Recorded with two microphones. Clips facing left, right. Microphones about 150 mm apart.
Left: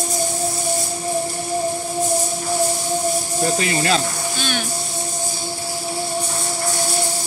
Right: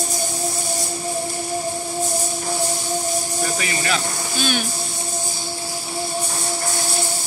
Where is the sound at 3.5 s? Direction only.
30° left (ahead or behind).